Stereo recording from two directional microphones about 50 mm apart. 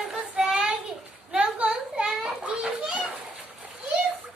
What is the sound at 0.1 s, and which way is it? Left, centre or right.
Child singing, centre.